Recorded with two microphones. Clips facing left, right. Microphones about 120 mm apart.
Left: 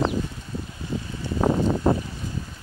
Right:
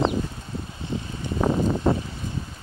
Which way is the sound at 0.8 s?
25° right (ahead or behind).